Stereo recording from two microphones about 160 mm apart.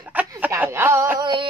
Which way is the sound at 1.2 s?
30° right (ahead or behind).